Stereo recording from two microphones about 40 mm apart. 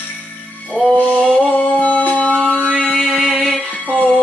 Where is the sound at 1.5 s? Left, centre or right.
Left.